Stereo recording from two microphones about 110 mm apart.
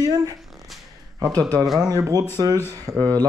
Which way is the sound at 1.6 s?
Centre (ahead or behind).